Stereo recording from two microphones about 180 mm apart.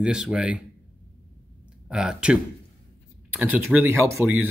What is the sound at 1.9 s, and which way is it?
Speech, 5° right (ahead or behind).